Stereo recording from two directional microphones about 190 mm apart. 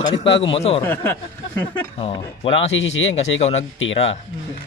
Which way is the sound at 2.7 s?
80° left.